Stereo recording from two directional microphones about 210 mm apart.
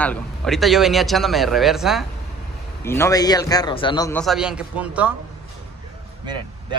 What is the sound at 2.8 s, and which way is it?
A man's voice, 10° left (ahead or behind).